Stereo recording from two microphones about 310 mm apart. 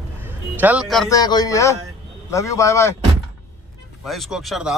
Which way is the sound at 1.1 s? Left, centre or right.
Centre.